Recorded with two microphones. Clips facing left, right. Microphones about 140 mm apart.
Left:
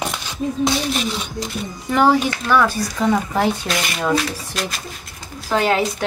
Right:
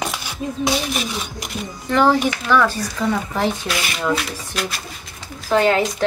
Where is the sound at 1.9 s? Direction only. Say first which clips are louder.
Even; 10° left (ahead or behind).